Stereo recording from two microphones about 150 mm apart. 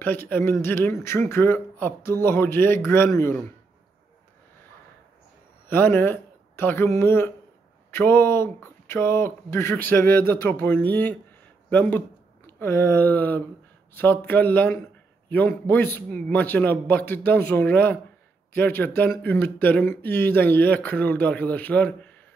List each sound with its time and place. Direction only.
0.0 s speech: 15° left (ahead or behind)
5.7 s speech: 15° left (ahead or behind)
12.4 s a sound: 15° left (ahead or behind)
13.9 s a man's voice: 15° left (ahead or behind)